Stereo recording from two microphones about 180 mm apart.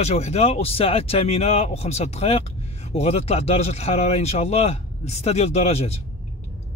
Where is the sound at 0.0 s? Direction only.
35° left (ahead or behind).